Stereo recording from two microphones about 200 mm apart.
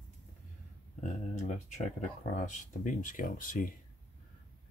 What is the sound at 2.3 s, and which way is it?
Speech, 40° left (ahead or behind).